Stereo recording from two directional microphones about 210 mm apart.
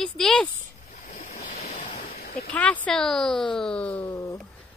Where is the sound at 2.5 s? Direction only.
5° left (ahead or behind).